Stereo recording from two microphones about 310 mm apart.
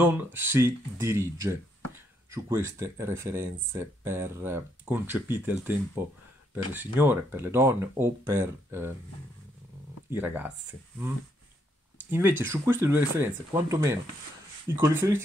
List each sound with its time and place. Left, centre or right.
0.0 s speech: centre
10.1 s speech: centre
12.0 s speech: centre